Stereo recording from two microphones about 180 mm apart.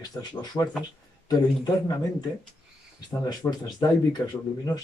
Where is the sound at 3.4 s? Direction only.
20° left (ahead or behind).